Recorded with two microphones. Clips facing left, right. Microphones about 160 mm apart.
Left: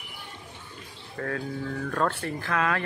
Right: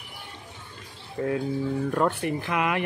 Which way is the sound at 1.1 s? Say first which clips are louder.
Right 5 dB; 20° right (ahead or behind).